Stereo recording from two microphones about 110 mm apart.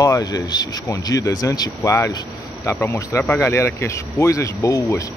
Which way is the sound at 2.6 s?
20° left (ahead or behind).